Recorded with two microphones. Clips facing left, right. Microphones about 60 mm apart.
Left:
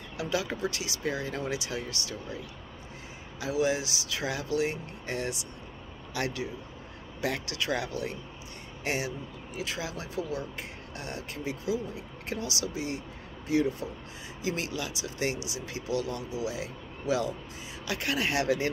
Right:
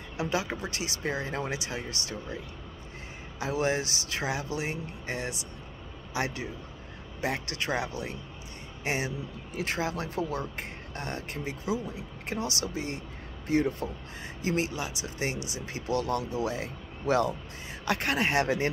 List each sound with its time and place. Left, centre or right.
0.2 s speech: right
4.3 s speech: right
9.6 s speech: right